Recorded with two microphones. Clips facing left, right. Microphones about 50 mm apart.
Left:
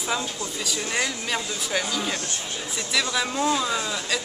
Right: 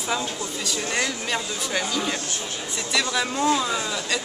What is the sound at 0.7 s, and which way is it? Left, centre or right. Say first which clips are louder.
Speech: right 1 dB; centre.